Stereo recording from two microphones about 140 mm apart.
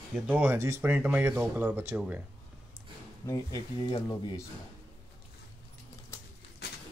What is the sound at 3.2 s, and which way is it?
Speech, 25° left (ahead or behind).